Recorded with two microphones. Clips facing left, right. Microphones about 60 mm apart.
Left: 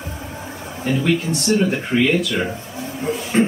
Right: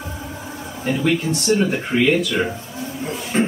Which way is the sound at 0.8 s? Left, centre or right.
Centre.